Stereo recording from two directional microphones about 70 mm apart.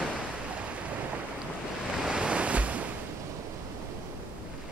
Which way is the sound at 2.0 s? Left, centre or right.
Centre.